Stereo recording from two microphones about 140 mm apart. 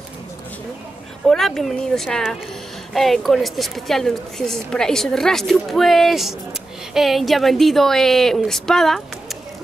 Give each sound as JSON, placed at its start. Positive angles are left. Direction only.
{"t": 1.2, "sound": "a woman's voice", "side_deg": 5}